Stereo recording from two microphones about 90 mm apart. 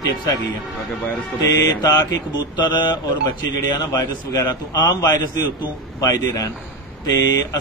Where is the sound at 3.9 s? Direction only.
50° left (ahead or behind).